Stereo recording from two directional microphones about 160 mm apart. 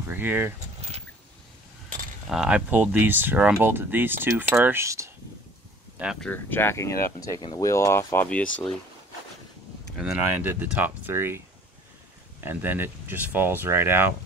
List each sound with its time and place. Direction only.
0.0 s speech: 15° right (ahead or behind)
2.2 s speech: 5° right (ahead or behind)
6.2 s speech: 10° left (ahead or behind)
9.9 s speech: 15° right (ahead or behind)